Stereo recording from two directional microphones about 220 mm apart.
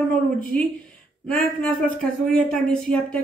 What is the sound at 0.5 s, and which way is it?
Speech, 5° left (ahead or behind).